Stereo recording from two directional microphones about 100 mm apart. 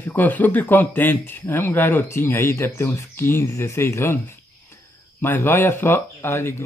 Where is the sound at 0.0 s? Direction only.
20° left (ahead or behind).